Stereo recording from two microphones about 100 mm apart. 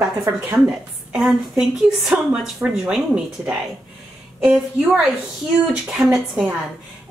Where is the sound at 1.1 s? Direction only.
5° right (ahead or behind).